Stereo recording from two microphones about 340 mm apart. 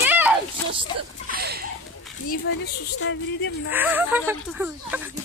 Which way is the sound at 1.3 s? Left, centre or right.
Right.